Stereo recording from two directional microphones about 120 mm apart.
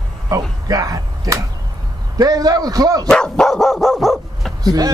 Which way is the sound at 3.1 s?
5° left (ahead or behind).